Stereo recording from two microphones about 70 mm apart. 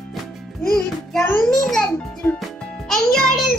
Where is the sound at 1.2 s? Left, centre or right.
Left.